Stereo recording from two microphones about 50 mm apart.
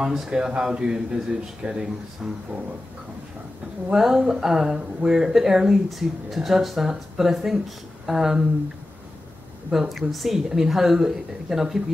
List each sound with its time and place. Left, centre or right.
0.0 s speech: centre
3.9 s speech: centre
9.7 s speech: centre